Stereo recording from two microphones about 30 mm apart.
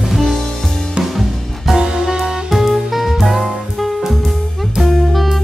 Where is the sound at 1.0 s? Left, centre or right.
Right.